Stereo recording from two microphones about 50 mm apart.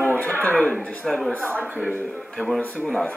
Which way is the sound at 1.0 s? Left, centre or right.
Centre.